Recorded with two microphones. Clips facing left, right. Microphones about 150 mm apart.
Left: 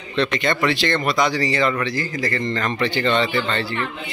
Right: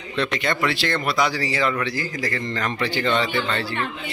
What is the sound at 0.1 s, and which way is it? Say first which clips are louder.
Speech: left 3 dB; 10° right (ahead or behind).